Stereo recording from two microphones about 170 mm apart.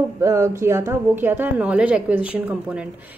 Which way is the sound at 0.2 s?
15° right (ahead or behind).